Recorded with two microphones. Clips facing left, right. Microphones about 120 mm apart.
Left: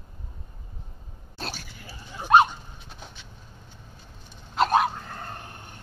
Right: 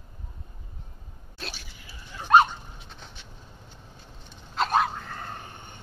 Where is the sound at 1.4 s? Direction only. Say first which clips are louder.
Left 4 dB; 40° left (ahead or behind).